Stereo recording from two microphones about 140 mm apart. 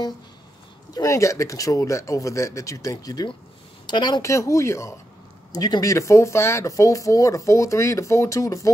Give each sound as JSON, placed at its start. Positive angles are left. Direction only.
{"t": 0.9, "sound": "speech", "side_deg": 20}